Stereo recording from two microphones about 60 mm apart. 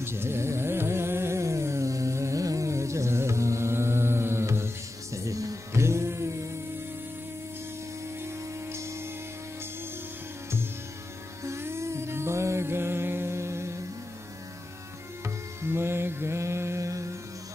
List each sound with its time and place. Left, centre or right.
0.0 s carnatic music: right
8.2 s music: right
11.4 s music: right
15.2 s music: right